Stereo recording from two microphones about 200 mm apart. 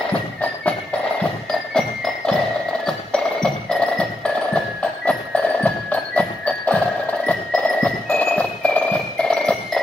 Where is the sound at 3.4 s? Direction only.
5° left (ahead or behind).